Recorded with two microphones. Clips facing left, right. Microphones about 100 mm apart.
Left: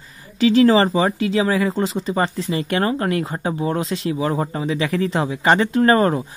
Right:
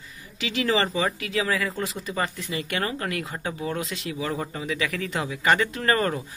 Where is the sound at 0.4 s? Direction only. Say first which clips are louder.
Left 11 dB; 35° left (ahead or behind).